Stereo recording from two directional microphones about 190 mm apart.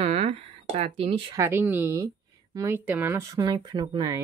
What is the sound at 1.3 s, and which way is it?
Speech, 15° right (ahead or behind).